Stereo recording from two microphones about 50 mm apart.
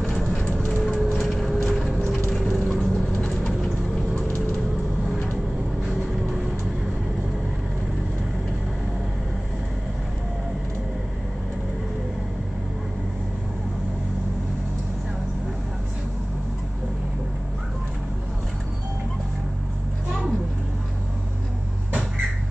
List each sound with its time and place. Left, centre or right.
0.0 s vehicle: centre
0.3 s vehicle: centre
0.9 s a sound: centre
2.3 s vehicle: centre